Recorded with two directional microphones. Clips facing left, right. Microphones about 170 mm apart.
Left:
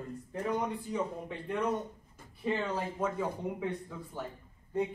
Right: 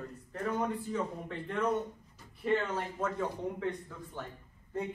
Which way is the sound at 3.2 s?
10° left (ahead or behind).